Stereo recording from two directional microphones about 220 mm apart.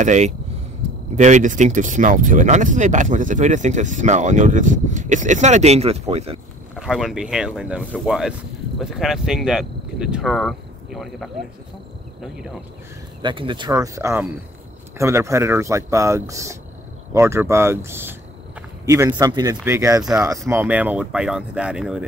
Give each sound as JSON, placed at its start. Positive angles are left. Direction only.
{"t": 0.0, "sound": "speech", "side_deg": -35}
{"t": 6.7, "sound": "speech", "side_deg": 0}
{"t": 13.2, "sound": "speech", "side_deg": -20}